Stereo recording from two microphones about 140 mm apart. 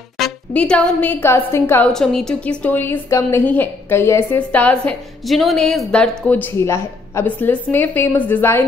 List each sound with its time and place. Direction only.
0.5 s a woman's voice: 10° left (ahead or behind)
1.9 s a woman's voice: 5° left (ahead or behind)
6.6 s a woman's voice: 20° left (ahead or behind)